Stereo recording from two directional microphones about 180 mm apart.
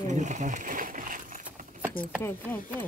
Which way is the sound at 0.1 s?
45° right (ahead or behind).